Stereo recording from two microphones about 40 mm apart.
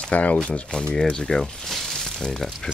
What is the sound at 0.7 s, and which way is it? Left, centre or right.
Speech, left.